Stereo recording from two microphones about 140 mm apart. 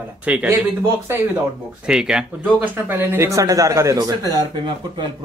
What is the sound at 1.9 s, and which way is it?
Speech, 5° right (ahead or behind).